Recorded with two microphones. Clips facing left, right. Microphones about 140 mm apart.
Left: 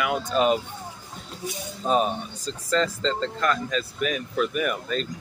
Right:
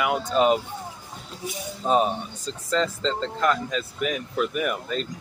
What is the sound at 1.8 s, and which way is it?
Speech, 20° right (ahead or behind).